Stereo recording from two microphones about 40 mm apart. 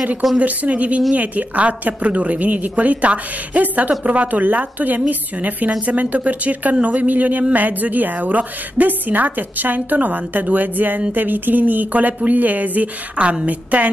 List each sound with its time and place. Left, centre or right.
0.4 s a woman's voice: right